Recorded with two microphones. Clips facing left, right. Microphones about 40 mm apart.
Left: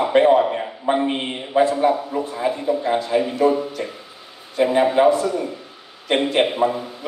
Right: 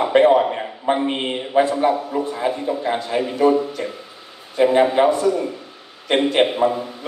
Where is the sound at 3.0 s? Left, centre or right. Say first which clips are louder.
Left 1 dB; right.